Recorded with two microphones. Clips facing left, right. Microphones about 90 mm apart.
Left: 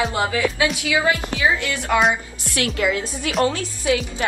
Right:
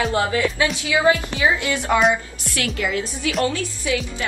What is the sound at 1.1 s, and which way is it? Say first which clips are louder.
Speech: right 4 dB; 25° right (ahead or behind).